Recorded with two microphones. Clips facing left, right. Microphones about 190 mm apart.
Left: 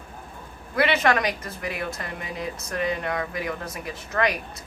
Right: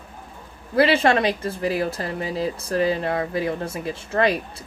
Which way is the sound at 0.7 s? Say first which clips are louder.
Right 4 dB; 30° right (ahead or behind).